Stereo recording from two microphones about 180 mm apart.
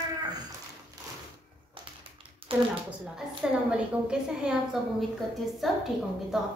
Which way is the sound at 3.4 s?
5° right (ahead or behind).